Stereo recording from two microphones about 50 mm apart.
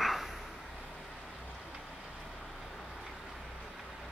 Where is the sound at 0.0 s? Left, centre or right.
Centre.